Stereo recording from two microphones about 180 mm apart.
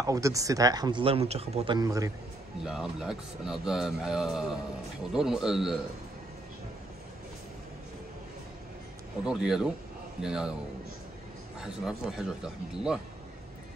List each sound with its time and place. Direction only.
0.0 s speech: 20° right (ahead or behind)
1.8 s a man's voice: 20° right (ahead or behind)
2.6 s speech: 5° right (ahead or behind)
9.2 s speech: 5° right (ahead or behind)
11.6 s speech: 5° right (ahead or behind)